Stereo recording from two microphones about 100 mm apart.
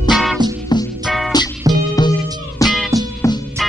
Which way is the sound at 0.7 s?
45° left (ahead or behind).